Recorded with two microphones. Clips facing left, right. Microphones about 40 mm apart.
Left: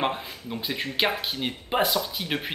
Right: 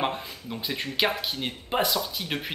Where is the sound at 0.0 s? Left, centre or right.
Centre.